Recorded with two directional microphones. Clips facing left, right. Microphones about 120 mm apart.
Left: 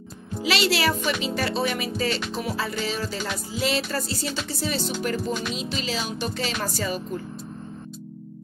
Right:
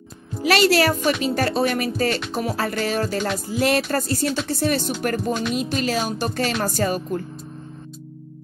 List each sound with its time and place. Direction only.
0.4 s speech: 50° right (ahead or behind)
3.4 s music: 55° right (ahead or behind)
3.9 s speech: 50° right (ahead or behind)